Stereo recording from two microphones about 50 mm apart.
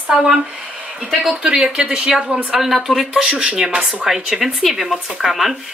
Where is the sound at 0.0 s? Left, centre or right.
Right.